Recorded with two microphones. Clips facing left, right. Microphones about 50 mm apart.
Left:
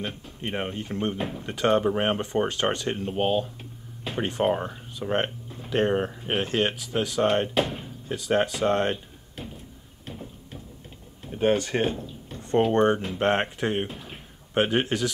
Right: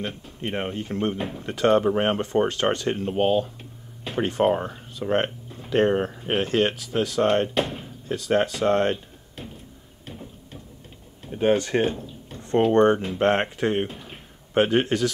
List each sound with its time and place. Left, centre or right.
0.4 s speech: centre
10.0 s a sound: centre
12.5 s speech: centre